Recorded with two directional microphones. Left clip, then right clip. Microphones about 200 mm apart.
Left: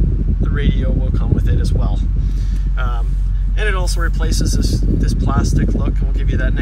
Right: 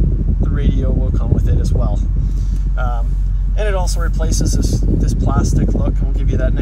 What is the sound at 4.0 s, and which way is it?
Speech, 35° right (ahead or behind).